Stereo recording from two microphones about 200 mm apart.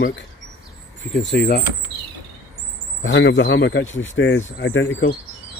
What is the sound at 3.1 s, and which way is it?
Speech, 65° left (ahead or behind).